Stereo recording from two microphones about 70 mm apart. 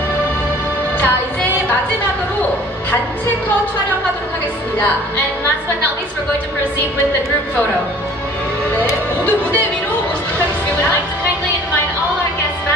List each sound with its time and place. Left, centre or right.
0.9 s music: left
9.2 s music: left